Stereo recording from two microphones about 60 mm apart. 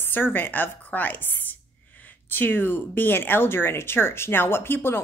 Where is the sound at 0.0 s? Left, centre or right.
Left.